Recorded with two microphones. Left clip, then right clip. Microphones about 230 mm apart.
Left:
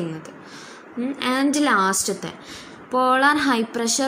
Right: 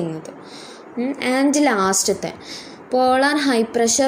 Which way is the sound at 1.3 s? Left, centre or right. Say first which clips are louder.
Right 3 dB; centre.